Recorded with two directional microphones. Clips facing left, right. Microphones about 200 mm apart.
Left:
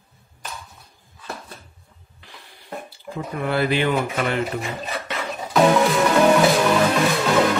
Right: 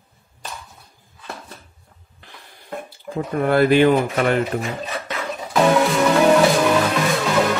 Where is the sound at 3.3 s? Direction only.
50° right (ahead or behind).